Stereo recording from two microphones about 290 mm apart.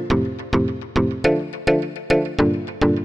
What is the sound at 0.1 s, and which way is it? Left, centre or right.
Music, centre.